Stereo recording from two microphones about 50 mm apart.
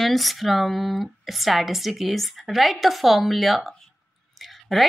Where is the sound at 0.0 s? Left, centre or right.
Centre.